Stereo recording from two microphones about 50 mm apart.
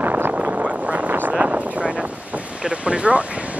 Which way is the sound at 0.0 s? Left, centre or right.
Right.